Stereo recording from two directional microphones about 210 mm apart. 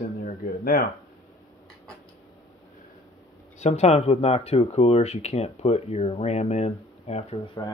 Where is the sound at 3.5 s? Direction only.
30° left (ahead or behind).